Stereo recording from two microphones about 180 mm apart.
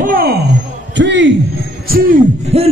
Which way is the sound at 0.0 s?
55° right (ahead or behind).